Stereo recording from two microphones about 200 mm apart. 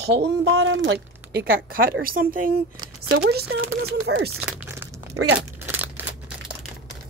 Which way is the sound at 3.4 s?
75° right (ahead or behind).